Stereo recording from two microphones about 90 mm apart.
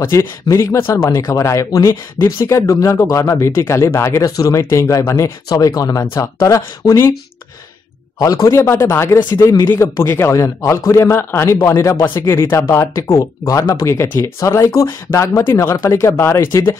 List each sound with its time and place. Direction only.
0.0 s speech: 30° left (ahead or behind)
8.2 s speech: 40° left (ahead or behind)
9.3 s speech: 40° left (ahead or behind)